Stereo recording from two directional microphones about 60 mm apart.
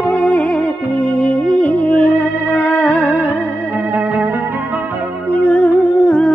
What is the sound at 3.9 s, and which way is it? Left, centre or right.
Music, right.